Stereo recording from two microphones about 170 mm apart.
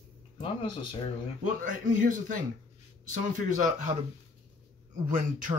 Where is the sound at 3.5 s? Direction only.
45° right (ahead or behind).